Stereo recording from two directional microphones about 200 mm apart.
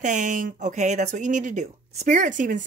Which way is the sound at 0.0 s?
40° right (ahead or behind).